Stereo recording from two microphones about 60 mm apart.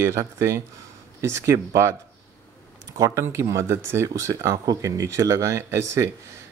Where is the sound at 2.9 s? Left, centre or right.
Right.